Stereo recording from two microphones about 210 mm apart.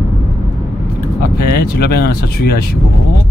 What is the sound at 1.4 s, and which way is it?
Speech, 45° left (ahead or behind).